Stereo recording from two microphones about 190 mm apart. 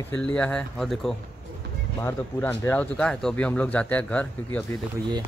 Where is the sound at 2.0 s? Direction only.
15° left (ahead or behind).